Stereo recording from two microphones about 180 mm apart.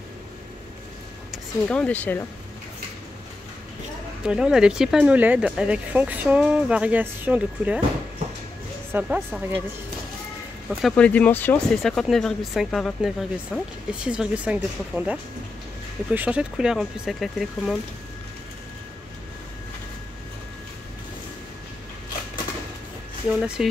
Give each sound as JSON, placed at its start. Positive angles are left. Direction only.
{"t": 1.3, "sound": "speech", "side_deg": 5}
{"t": 4.2, "sound": "speech", "side_deg": -5}
{"t": 8.9, "sound": "speech", "side_deg": -10}
{"t": 10.7, "sound": "speech", "side_deg": 0}
{"t": 23.4, "sound": "speech", "side_deg": -5}